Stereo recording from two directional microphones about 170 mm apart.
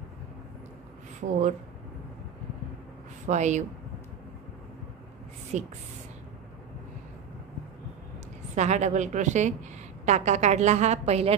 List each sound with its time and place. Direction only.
1.2 s speech: 60° right (ahead or behind)
3.3 s a woman's voice: 45° right (ahead or behind)
5.5 s a woman's voice: 45° right (ahead or behind)
8.5 s a woman's voice: 45° right (ahead or behind)